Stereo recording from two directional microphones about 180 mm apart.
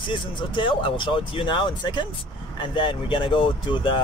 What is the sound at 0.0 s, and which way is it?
Speech, 25° left (ahead or behind).